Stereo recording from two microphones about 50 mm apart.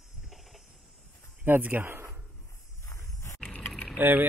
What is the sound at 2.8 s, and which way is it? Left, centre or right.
Roaring cats, left.